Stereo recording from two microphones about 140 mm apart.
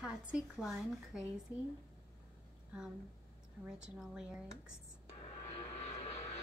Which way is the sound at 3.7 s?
5° right (ahead or behind).